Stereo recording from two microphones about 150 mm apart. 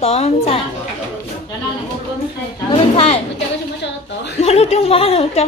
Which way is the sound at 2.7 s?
40° left (ahead or behind).